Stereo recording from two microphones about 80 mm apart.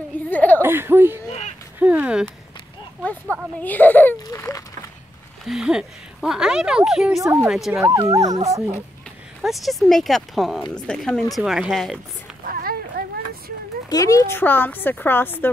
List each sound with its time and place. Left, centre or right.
0.3 s a sound: left
0.6 s speech: right
3.0 s a woman's voice: centre
4.3 s a sound: left
5.4 s speech: centre
7.2 s speech: right
7.4 s speech: centre
7.9 s speech: right
9.4 s speech: centre
10.7 s speech: centre
11.3 s speech: centre
13.8 s speech: left
14.3 s a woman's voice: left